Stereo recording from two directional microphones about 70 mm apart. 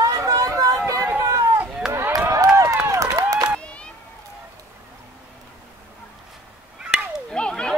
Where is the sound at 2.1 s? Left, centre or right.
Right.